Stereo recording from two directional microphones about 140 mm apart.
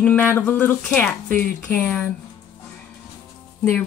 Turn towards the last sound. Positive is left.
turn(degrees=10)  # may be behind; listen again after turning